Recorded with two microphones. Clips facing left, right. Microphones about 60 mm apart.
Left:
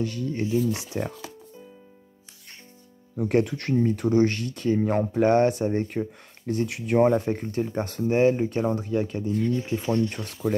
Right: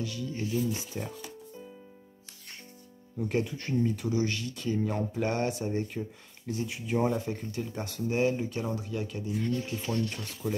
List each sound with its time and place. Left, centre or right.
0.0 s speech: left
0.7 s speech: left
3.2 s speech: left
3.8 s speech: left
9.5 s speech: left
10.1 s speech: left